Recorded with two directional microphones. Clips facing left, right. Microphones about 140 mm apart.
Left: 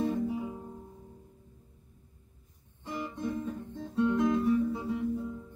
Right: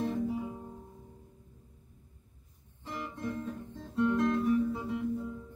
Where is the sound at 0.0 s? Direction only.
5° left (ahead or behind).